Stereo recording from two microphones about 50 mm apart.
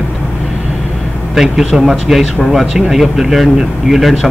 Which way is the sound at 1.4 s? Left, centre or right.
Centre.